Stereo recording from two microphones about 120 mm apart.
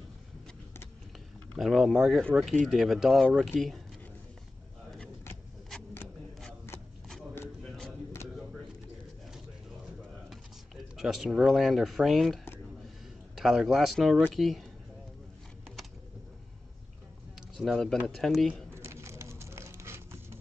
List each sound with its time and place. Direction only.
1.5 s speech: centre (ahead or behind)
7.6 s a sound: 5° left (ahead or behind)
11.0 s speech: centre (ahead or behind)
13.4 s speech: 5° right (ahead or behind)
17.4 s speech: centre (ahead or behind)
18.7 s a sound: 20° right (ahead or behind)